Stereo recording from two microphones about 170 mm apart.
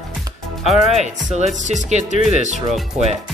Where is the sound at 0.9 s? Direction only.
40° right (ahead or behind).